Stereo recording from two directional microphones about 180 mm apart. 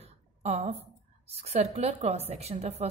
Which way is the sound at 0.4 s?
35° right (ahead or behind).